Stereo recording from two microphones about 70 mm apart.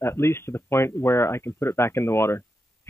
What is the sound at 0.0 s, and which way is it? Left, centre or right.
Speech, left.